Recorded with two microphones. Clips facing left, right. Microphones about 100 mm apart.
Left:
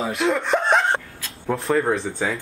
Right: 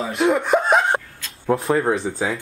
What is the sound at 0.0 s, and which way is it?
Speech, centre (ahead or behind).